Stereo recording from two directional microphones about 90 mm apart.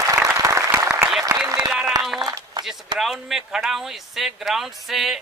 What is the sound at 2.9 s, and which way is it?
A man's voice, centre (ahead or behind).